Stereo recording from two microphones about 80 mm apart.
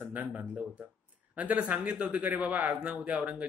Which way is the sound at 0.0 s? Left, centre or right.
Right.